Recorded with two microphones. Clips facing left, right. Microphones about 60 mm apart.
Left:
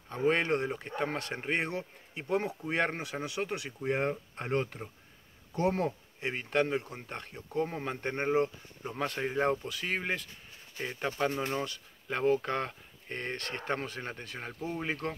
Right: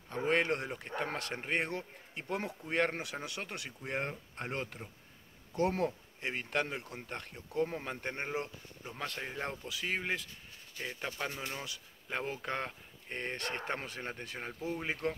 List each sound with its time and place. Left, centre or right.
0.1 s speech: centre
9.7 s speech: centre
10.8 s speech: centre
11.6 s speech: centre